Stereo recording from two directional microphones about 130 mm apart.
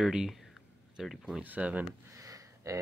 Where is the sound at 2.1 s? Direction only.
25° right (ahead or behind).